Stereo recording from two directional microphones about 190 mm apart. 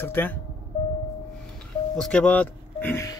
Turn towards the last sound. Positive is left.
turn(degrees=10)  # may be behind; listen again after turning